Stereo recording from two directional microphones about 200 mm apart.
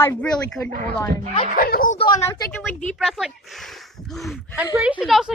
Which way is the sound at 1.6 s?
45° left (ahead or behind).